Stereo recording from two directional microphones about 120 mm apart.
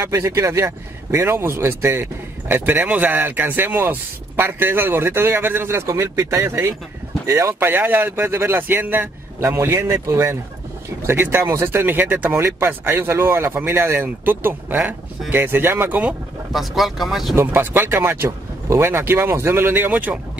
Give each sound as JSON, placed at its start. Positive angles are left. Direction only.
{"t": 0.0, "sound": "speech", "side_deg": -25}
{"t": 17.4, "sound": "speech", "side_deg": -20}